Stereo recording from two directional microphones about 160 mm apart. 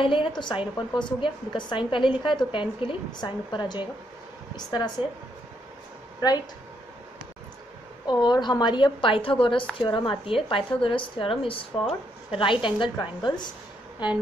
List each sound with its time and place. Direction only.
0.0 s a woman's voice: 30° left (ahead or behind)
8.1 s a woman's voice: 25° left (ahead or behind)